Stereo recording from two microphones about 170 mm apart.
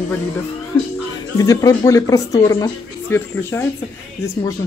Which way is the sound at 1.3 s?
20° left (ahead or behind).